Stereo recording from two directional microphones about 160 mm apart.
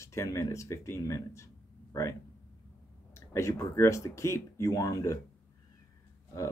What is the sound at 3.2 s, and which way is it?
Speech, 20° left (ahead or behind).